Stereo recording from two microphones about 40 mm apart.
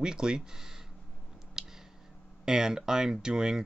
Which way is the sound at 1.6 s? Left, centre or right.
Centre.